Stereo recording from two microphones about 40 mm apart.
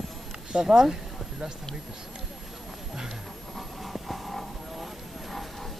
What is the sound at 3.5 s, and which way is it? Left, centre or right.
Vehicle, centre.